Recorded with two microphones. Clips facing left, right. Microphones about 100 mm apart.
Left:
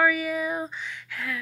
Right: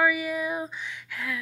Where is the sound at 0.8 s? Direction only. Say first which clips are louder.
Even; 15° right (ahead or behind).